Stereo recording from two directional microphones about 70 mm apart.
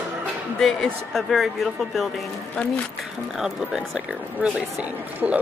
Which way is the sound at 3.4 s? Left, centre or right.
Centre.